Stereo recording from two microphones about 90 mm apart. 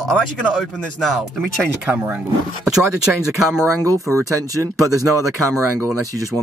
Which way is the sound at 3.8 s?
35° right (ahead or behind).